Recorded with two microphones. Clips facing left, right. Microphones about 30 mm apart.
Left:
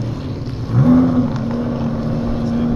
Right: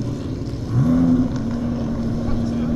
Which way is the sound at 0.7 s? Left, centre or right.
Left.